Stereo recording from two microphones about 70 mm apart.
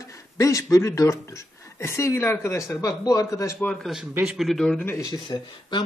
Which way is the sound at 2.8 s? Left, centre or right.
Left.